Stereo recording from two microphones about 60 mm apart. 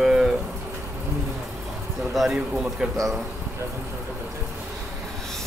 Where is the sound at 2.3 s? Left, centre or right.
Centre.